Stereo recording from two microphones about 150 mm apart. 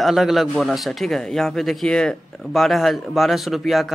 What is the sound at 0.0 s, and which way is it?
A man's voice, centre (ahead or behind).